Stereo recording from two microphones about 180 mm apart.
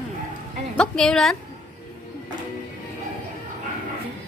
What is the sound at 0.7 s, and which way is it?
Speech, 5° left (ahead or behind).